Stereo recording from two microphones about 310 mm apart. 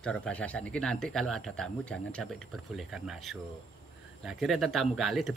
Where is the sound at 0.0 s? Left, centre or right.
Centre.